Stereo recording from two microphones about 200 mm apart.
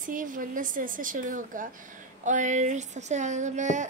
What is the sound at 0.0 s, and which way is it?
A woman's voice, 40° right (ahead or behind).